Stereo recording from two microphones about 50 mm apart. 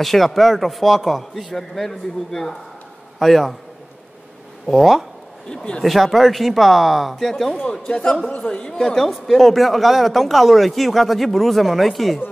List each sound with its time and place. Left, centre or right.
0.0 s a man's voice: centre
4.6 s a man's voice: centre
5.5 s a man's voice: centre
5.8 s a man's voice: centre
7.6 s a man's voice: centre